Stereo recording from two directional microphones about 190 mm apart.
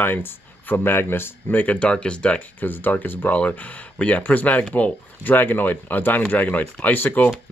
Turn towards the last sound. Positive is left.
turn(degrees=10)  # may be behind; listen again after turning